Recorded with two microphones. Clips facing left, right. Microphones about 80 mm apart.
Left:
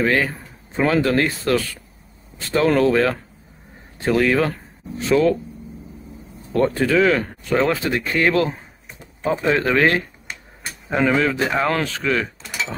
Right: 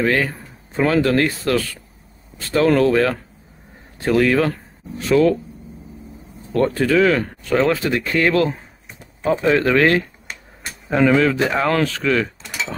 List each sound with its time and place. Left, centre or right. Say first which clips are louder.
0.0 s speech: even; centre
6.5 s speech: right 1 dB; centre
9.2 s speech: right 3 dB; centre
9.5 s speech: right 2 dB; centre
12.4 s a sound: even; centre